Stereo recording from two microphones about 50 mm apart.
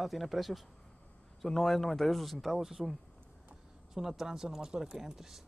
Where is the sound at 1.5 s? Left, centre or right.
Centre.